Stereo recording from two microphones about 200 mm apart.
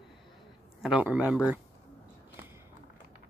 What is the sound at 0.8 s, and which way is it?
Speech, 5° right (ahead or behind).